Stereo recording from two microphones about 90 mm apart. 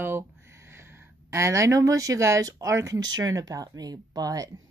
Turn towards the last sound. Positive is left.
turn(degrees=-45)  # may be behind; listen again after turning